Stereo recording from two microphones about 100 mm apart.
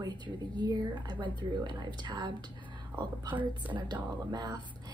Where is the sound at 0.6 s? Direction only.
45° right (ahead or behind).